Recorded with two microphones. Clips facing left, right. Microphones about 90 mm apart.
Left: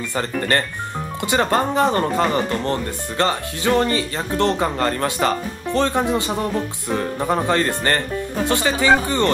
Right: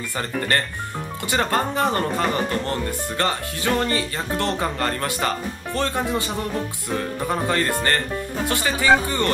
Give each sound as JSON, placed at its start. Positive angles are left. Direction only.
{"t": 0.1, "sound": "speech", "side_deg": 20}